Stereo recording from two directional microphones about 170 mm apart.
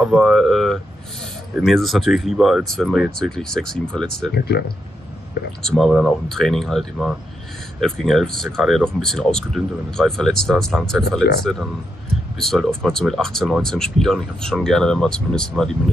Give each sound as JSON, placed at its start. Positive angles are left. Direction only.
{"t": 0.0, "sound": "speech", "side_deg": -5}
{"t": 5.7, "sound": "speech", "side_deg": 0}
{"t": 12.4, "sound": "speech", "side_deg": 0}